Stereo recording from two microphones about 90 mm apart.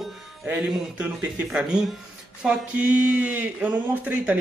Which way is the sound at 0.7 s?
10° right (ahead or behind).